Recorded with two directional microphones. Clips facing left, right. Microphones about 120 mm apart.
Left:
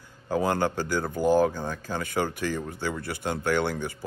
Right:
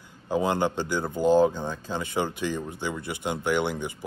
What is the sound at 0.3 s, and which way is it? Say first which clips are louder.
Speech: even; 20° right (ahead or behind).